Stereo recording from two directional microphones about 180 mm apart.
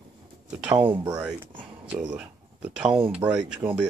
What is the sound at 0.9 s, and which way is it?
Speech, 20° right (ahead or behind).